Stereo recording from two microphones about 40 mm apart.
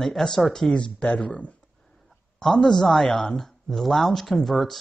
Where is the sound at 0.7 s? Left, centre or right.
Left.